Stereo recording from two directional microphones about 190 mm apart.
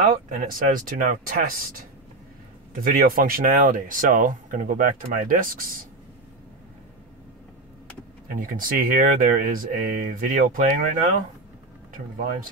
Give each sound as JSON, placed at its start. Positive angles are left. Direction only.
{"t": 0.3, "sound": "speech", "side_deg": -45}
{"t": 2.7, "sound": "speech", "side_deg": -45}
{"t": 8.4, "sound": "speech", "side_deg": -45}